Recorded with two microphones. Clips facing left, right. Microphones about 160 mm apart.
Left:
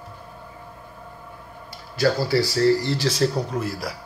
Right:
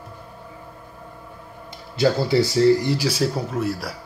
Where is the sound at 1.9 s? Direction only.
20° right (ahead or behind); by 3.9 s centre (ahead or behind).